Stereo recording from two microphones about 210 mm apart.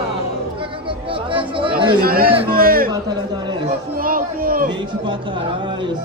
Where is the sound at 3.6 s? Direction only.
40° right (ahead or behind).